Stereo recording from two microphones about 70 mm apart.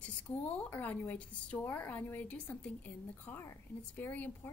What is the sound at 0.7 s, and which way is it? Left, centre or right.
A woman's voice, left.